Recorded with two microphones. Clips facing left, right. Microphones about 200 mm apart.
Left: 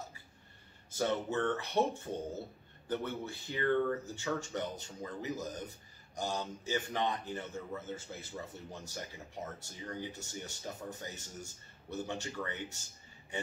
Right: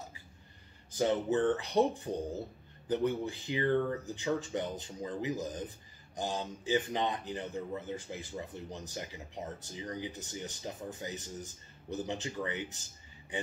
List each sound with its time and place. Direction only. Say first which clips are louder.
0.9 s speech: right 4 dB; 15° right (ahead or behind)